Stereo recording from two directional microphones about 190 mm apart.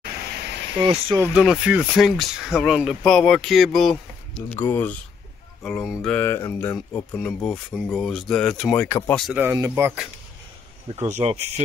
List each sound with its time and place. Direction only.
0.8 s speech: 25° right (ahead or behind)
1.2 s speech: 5° right (ahead or behind); by 9.2 s 10° left (ahead or behind)
9.2 s speech: 10° right (ahead or behind)
11.0 s speech: 35° right (ahead or behind)